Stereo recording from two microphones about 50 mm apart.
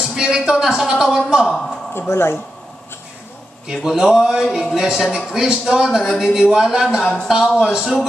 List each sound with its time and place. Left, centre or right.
0.0 s a man's voice: centre
1.5 s speech: centre
2.0 s speech: left
3.6 s a man's voice: centre